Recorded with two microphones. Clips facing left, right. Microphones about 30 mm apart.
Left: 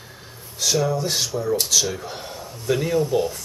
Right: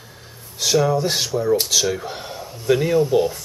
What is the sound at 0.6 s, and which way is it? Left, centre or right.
Speech, centre.